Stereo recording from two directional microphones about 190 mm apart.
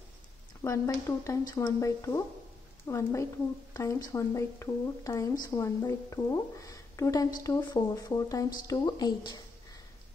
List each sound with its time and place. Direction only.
0.7 s a woman's voice: 15° left (ahead or behind)